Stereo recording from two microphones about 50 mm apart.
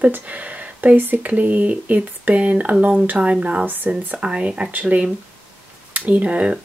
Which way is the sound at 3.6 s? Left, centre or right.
Right.